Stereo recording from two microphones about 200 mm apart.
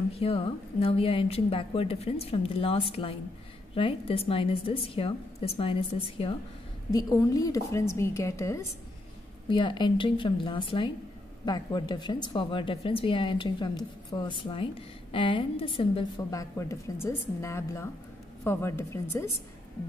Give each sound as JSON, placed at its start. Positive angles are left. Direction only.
{"t": 0.1, "sound": "a woman's voice", "side_deg": 30}